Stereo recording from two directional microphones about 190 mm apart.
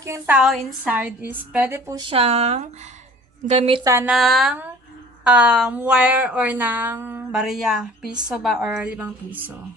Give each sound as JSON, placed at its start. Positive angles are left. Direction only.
{"t": 0.0, "sound": "speech", "side_deg": -15}
{"t": 0.4, "sound": "speech", "side_deg": 0}
{"t": 2.0, "sound": "speech", "side_deg": -30}
{"t": 3.8, "sound": "speech", "side_deg": -15}
{"t": 4.1, "sound": "a woman's voice", "side_deg": 0}